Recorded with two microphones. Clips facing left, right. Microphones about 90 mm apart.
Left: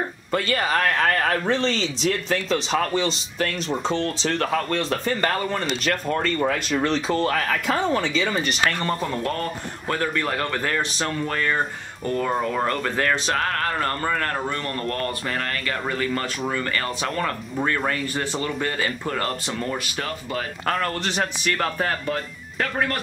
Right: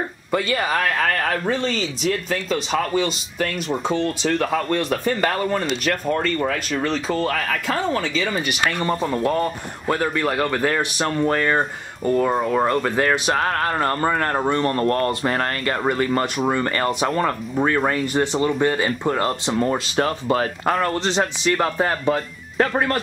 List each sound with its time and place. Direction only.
0.3 s speech: 10° right (ahead or behind)
10.7 s speech: 25° right (ahead or behind)
12.0 s speech: 10° right (ahead or behind); by 16.9 s 30° right (ahead or behind)
17.0 s speech: 20° right (ahead or behind); by 20.4 s 40° right (ahead or behind)
20.8 s speech: 20° right (ahead or behind)
22.6 s speech: 30° right (ahead or behind)